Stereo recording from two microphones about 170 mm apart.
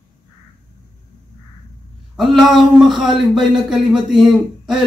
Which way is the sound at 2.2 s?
Centre (ahead or behind).